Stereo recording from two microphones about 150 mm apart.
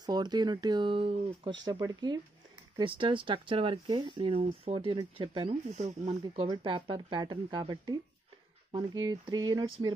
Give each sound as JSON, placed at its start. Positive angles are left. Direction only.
{"t": 0.0, "sound": "speech", "side_deg": -30}
{"t": 5.7, "sound": "speech", "side_deg": -50}
{"t": 6.5, "sound": "speech", "side_deg": -35}